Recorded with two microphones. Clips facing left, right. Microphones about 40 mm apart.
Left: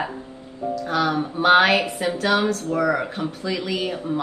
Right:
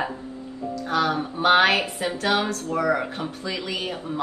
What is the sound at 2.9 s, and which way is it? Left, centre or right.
Speech, centre.